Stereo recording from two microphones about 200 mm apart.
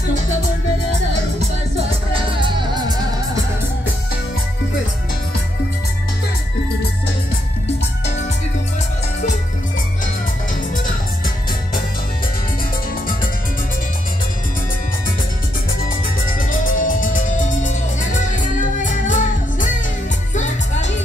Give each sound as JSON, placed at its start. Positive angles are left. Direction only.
{"t": 2.1, "sound": "music", "side_deg": -25}
{"t": 16.3, "sound": "music", "side_deg": 40}